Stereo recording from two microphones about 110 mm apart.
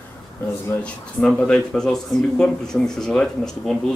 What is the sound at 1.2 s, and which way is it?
A man's voice, 5° left (ahead or behind).